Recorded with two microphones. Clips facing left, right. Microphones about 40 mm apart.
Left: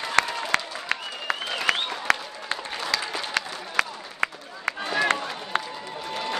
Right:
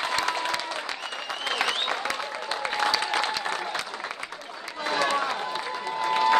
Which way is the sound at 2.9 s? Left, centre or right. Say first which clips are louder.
Right 3 dB; right.